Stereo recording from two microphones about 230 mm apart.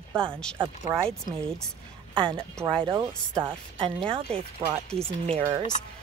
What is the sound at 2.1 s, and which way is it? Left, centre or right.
Speech, right.